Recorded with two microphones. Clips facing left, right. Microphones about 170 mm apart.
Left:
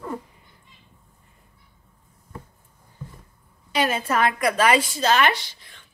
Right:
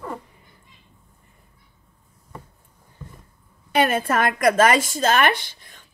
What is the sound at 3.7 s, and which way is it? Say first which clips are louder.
A woman's voice: right 3 dB; 55° right (ahead or behind).